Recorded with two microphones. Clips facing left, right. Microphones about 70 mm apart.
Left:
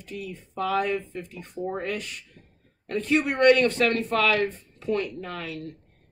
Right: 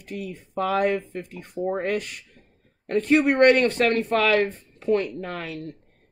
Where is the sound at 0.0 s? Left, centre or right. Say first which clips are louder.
Right 3 dB; right.